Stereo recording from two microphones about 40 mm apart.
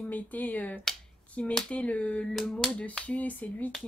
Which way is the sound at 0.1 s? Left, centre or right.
Left.